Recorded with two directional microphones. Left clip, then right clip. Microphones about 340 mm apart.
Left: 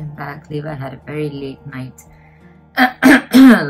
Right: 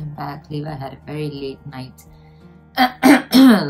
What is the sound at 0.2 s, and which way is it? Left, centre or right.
Speech, centre.